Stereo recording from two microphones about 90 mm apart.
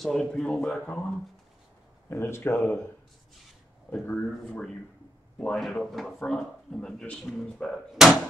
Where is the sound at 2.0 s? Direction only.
30° left (ahead or behind).